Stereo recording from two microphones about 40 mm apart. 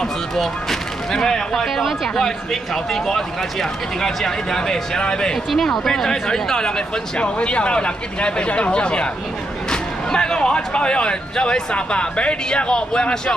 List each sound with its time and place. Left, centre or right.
0.0 s speech: centre
5.5 s speech: centre
7.2 s speech: left